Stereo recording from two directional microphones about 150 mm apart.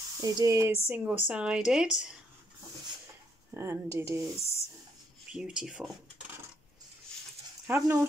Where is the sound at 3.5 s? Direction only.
20° right (ahead or behind).